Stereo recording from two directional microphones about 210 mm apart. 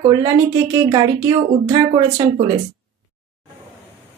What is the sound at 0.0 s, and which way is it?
Speech, 20° right (ahead or behind).